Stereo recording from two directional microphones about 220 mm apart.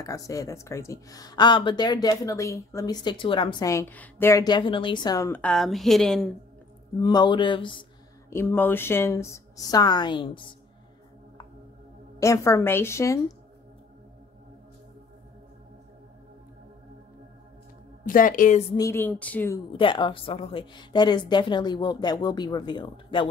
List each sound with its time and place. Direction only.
0.0 s speech: 15° left (ahead or behind)
7.0 s a woman's voice: 20° left (ahead or behind)
8.3 s speech: 10° left (ahead or behind)
12.2 s speech: 15° left (ahead or behind)
18.0 s a woman's voice: 40° left (ahead or behind)
18.8 s speech: 10° left (ahead or behind)
19.7 s a woman's voice: 20° left (ahead or behind)